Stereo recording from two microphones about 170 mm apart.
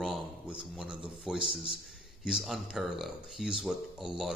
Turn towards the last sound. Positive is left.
turn(degrees=-5)  # may be behind; listen again after turning